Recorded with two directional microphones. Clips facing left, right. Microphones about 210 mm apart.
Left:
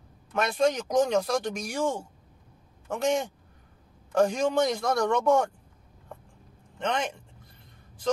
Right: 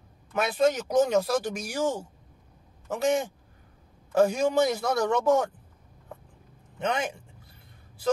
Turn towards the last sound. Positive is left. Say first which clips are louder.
# right 1 dB
turn(degrees=-5)  # may be behind; listen again after turning